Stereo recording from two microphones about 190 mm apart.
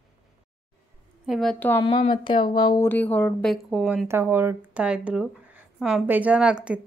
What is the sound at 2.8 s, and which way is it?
Speech, 10° left (ahead or behind).